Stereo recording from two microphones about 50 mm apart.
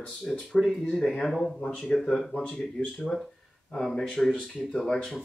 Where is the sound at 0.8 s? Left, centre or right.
Centre.